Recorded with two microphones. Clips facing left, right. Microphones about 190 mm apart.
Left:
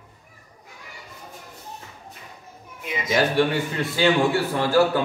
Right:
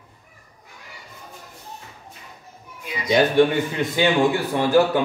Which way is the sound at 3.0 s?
20° right (ahead or behind).